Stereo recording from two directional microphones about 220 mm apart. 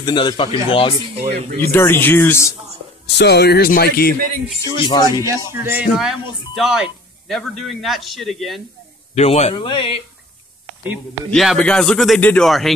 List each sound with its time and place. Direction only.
0.0 s speech: 20° left (ahead or behind)
1.1 s speech: 30° right (ahead or behind)
1.6 s speech: 10° left (ahead or behind)
3.2 s speech: 50° left (ahead or behind)
4.7 s speech: 20° left (ahead or behind)
5.5 s speech: 10° right (ahead or behind)
9.1 s speech: 30° left (ahead or behind)
11.2 s speech: centre (ahead or behind)